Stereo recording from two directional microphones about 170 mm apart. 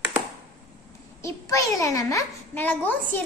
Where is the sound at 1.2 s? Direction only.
20° left (ahead or behind).